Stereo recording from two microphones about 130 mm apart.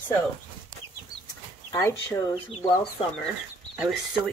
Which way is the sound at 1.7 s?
25° left (ahead or behind).